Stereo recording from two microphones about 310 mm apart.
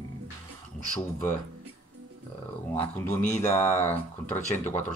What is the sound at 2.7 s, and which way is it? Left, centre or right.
Speech, centre.